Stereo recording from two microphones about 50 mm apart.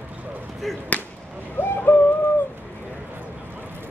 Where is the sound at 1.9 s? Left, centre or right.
Left.